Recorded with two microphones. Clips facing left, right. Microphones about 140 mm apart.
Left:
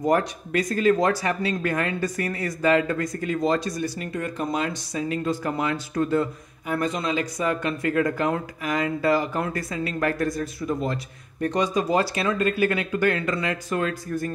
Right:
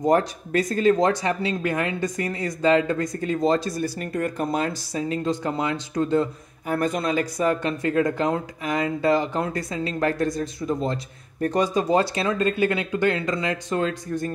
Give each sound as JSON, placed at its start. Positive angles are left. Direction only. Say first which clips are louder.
{"t": 0.0, "sound": "speech", "louder": "right 2 dB", "side_deg": -30}
{"t": 4.0, "sound": "speech", "louder": "right 3 dB", "side_deg": -45}
{"t": 6.7, "sound": "speech", "louder": "right 2 dB", "side_deg": -45}